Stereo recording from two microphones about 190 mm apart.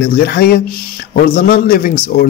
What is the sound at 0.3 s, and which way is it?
A man's voice, 55° left (ahead or behind).